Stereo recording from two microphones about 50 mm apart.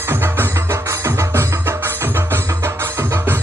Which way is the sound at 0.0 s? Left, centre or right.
Right.